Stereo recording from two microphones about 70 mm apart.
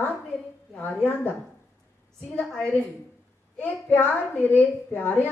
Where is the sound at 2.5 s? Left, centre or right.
Centre.